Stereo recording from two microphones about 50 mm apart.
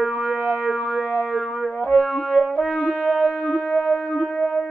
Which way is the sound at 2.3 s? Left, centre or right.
Centre.